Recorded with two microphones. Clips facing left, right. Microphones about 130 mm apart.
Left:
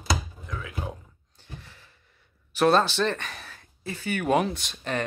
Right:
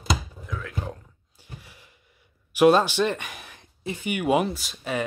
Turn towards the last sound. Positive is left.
turn(degrees=-5)  # may be behind; listen again after turning